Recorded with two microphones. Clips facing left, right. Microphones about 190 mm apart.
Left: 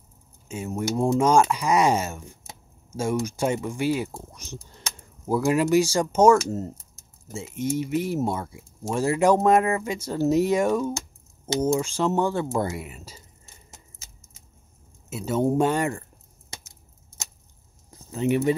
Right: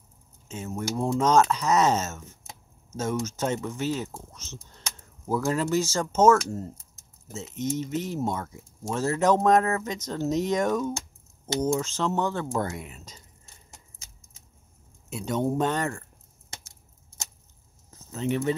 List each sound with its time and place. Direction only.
0.5 s speech: 10° left (ahead or behind)
15.0 s speech: 5° left (ahead or behind)
17.9 s speech: 10° left (ahead or behind)